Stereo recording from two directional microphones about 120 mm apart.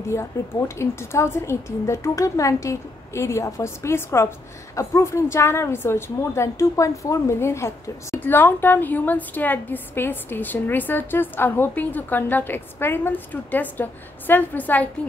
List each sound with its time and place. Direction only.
0.1 s a woman's voice: 25° left (ahead or behind)